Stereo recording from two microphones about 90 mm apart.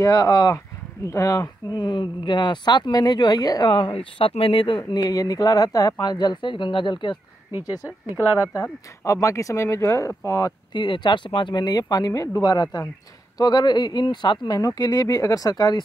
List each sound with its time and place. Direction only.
0.0 s speech: 40° left (ahead or behind)
3.7 s speech: 70° left (ahead or behind)
4.9 s speech: 45° left (ahead or behind)
9.0 s speech: 35° left (ahead or behind)
10.7 s speech: 60° left (ahead or behind)
11.6 s speech: 45° left (ahead or behind)
14.8 s speech: 40° left (ahead or behind)